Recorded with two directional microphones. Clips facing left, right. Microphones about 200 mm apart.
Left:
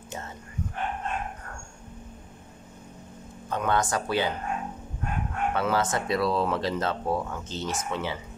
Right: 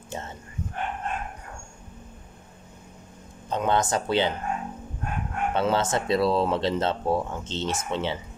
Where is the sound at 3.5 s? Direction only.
25° right (ahead or behind).